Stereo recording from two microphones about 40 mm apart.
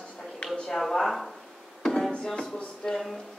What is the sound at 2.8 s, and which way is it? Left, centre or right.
Speech, centre.